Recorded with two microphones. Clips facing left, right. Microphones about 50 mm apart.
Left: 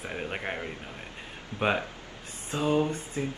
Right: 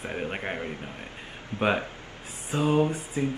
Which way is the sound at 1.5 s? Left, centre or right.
Right.